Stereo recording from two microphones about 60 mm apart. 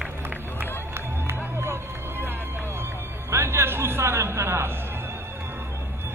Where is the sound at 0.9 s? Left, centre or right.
Right.